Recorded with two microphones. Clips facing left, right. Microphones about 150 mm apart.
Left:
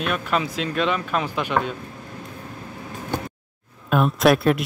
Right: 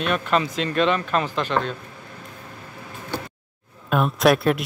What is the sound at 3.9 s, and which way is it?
Speech, centre (ahead or behind).